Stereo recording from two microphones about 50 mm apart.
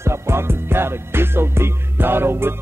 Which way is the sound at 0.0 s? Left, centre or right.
Right.